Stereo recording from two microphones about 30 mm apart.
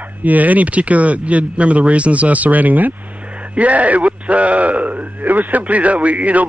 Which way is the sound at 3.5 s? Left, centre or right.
Right.